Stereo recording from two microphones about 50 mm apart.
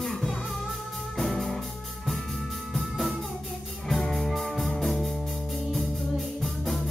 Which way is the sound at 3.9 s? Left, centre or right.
Centre.